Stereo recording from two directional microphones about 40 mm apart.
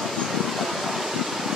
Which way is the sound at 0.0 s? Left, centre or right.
Centre.